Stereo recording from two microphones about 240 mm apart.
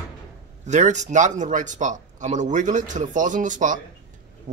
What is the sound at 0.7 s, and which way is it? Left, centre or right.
Speech, right.